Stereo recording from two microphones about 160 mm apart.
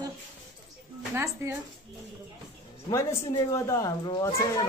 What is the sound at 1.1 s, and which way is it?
Speech, 15° right (ahead or behind).